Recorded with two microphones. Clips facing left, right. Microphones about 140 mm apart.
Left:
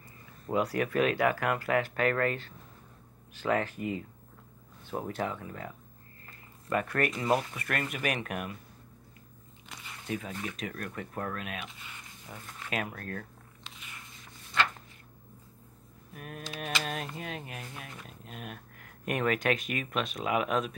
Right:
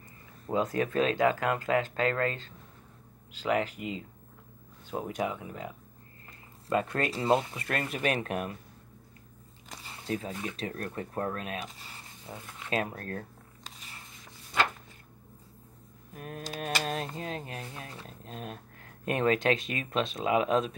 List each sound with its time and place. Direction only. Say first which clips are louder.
0.5 s speech: even; 25° right (ahead or behind)
3.4 s speech: even; 15° right (ahead or behind); by 8.5 s 30° right (ahead or behind)
9.7 s biting: right 2 dB; 35° right (ahead or behind)
10.4 s speech: right 2 dB; 30° right (ahead or behind)
12.4 s a sound: right 3 dB; 20° right (ahead or behind)
16.2 s speech: right 3 dB; 30° right (ahead or behind)
16.4 s speech: right 3 dB; 40° right (ahead or behind)